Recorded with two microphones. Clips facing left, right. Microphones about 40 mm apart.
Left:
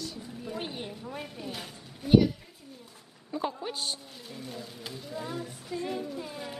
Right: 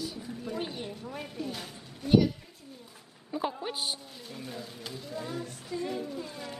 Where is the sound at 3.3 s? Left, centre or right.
Centre.